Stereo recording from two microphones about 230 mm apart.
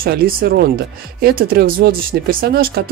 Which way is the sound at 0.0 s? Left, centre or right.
Right.